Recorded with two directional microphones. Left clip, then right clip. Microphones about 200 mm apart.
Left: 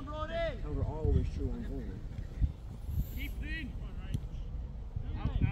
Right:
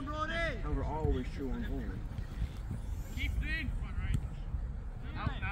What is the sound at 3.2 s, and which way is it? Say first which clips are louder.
Vehicle: right 5 dB; 40° right (ahead or behind).